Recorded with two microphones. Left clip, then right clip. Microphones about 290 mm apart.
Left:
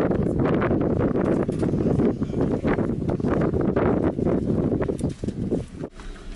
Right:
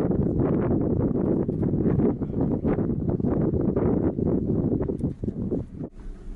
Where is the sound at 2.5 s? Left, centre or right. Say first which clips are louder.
Left 1 dB; centre.